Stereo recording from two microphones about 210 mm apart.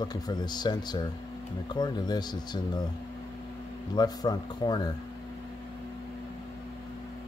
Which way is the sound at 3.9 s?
20° left (ahead or behind).